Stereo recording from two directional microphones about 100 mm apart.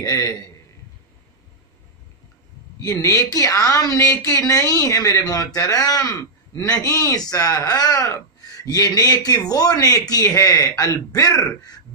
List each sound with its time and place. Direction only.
0.0 s a man's voice: 35° left (ahead or behind)
2.8 s a man's voice: 35° left (ahead or behind)